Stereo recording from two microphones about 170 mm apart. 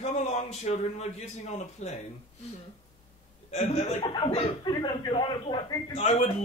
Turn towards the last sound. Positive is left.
turn(degrees=40)  # may be behind; listen again after turning